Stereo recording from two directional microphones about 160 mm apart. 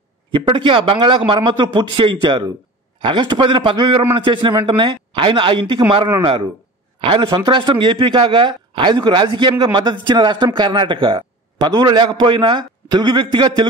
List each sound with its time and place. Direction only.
0.3 s a man's voice: 30° right (ahead or behind)
7.0 s a man's voice: 30° right (ahead or behind)